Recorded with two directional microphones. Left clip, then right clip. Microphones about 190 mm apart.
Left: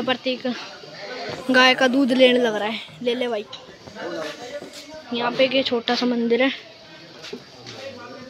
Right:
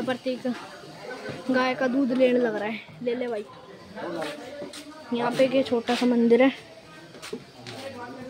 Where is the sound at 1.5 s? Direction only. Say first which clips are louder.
Left 9 dB; 5° left (ahead or behind).